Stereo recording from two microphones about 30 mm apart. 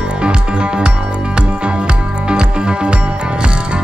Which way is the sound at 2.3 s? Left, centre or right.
Right.